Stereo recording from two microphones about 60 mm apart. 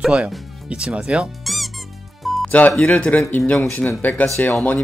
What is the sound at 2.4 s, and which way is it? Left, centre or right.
Music, left.